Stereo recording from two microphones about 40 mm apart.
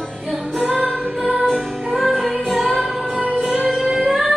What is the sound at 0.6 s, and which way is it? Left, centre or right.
Music, right.